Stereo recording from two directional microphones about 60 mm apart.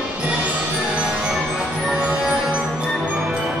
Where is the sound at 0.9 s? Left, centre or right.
Centre.